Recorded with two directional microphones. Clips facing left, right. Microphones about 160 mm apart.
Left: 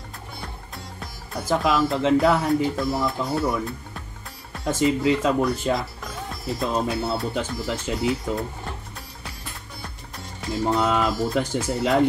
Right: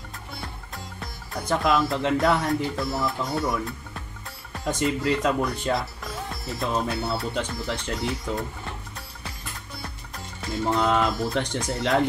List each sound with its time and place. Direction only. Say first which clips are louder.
0.9 s speech: left 2 dB; 5° left (ahead or behind)
10.7 s speech: even; 5° left (ahead or behind)